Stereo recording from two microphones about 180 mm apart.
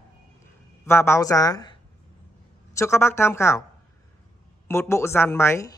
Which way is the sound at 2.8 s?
15° left (ahead or behind).